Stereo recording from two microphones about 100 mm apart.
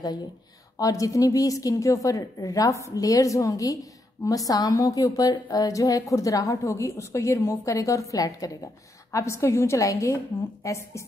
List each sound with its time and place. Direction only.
0.7 s a woman's voice: 35° left (ahead or behind)